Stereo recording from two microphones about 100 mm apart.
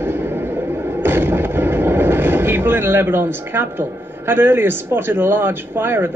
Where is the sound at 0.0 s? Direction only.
20° right (ahead or behind).